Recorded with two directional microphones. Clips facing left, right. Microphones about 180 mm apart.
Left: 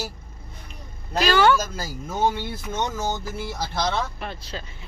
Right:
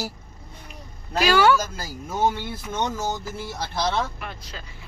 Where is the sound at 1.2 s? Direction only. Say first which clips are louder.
Even; 10° right (ahead or behind).